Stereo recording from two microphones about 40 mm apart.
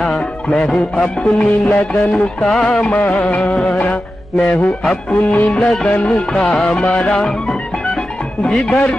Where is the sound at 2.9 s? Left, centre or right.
Left.